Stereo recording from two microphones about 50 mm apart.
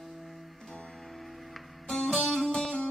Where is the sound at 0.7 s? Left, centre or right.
Centre.